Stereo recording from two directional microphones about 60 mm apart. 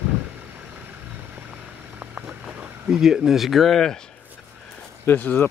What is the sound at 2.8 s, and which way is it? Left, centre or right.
Speech, centre.